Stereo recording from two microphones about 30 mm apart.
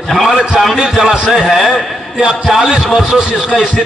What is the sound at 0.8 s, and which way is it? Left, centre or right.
Speech, centre.